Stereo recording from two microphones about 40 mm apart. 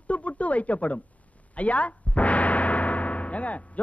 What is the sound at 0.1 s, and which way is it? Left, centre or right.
Speech, left.